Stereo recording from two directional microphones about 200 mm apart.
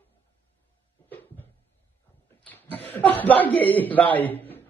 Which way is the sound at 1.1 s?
10° left (ahead or behind).